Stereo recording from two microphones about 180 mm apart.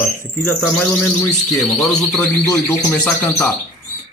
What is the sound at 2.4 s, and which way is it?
Speech, 15° left (ahead or behind).